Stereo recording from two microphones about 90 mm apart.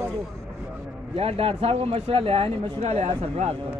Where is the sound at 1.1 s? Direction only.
90° right.